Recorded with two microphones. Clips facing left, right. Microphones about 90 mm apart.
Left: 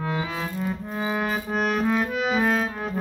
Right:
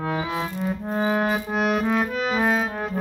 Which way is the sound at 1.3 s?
5° right (ahead or behind).